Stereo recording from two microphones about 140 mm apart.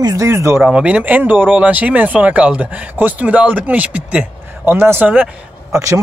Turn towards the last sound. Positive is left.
turn(degrees=-20)  # may be behind; listen again after turning